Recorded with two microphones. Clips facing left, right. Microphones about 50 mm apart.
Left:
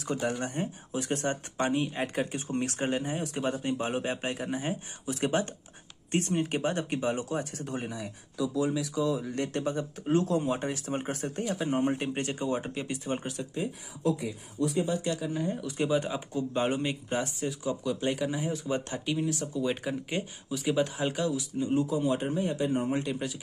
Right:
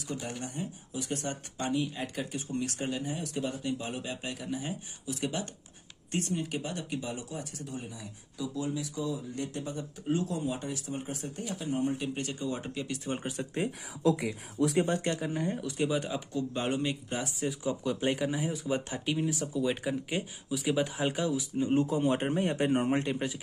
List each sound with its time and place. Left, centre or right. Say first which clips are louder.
0.0 s speech: left 7 dB; left
8.8 s speech: left 6 dB; left
10.1 s speech: left 6 dB; left
12.5 s speech: left 3 dB; left
14.1 s speech: right 1 dB; right
14.9 s speech: even; right
15.1 s speech: left 1 dB; right
15.6 s speech: left 2 dB; centre
17.8 s speech: even; centre
21.5 s a man's voice: right 1 dB; right
22.8 s speech: right 1 dB; right